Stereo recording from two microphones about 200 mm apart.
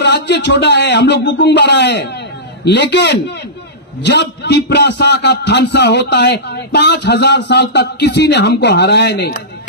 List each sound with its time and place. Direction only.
0.0 s a man's voice: 60° left (ahead or behind)